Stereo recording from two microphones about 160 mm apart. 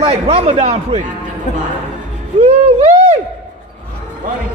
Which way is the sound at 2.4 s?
40° right (ahead or behind).